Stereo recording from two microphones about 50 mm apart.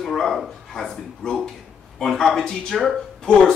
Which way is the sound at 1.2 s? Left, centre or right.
Centre.